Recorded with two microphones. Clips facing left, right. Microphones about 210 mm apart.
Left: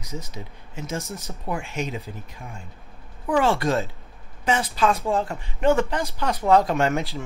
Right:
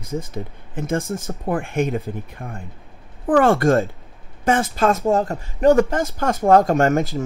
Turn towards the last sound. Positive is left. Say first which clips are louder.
# right 6 dB
turn(degrees=-45)  # may be behind; listen again after turning